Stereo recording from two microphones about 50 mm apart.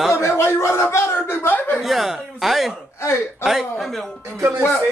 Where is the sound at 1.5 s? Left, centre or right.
Left.